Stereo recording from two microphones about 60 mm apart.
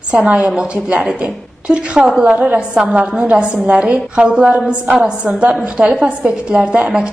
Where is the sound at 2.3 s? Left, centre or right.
Right.